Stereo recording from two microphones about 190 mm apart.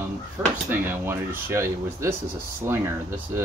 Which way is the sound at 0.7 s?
10° right (ahead or behind).